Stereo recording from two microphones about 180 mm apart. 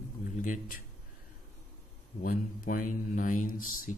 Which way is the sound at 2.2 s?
50° left (ahead or behind).